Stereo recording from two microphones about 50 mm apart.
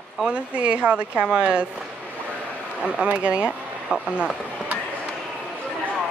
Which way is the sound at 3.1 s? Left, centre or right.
Right.